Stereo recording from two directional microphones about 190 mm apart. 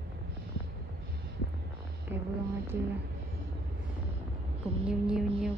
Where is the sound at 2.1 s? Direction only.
10° right (ahead or behind).